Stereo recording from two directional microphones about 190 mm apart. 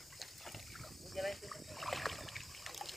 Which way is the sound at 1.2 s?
Centre (ahead or behind).